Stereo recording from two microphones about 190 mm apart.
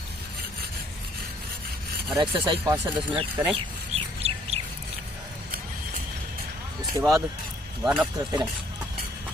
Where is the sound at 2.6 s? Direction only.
10° right (ahead or behind).